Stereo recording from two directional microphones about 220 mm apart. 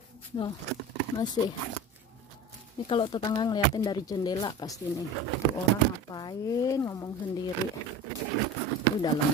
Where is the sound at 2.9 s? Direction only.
25° left (ahead or behind).